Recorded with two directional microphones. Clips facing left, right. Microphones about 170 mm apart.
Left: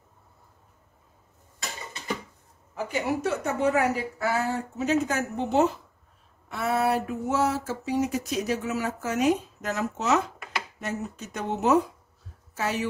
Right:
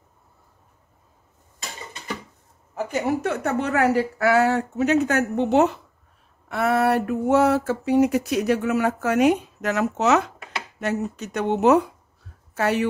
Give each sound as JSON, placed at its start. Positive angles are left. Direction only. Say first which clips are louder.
{"t": 2.7, "sound": "a woman's voice", "louder": "right 4 dB", "side_deg": -50}
{"t": 6.5, "sound": "a sound", "louder": "right 5 dB", "side_deg": -65}
{"t": 10.8, "sound": "a woman's voice", "louder": "right 10 dB", "side_deg": -70}